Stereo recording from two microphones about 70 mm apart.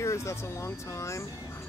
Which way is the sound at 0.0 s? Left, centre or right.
Left.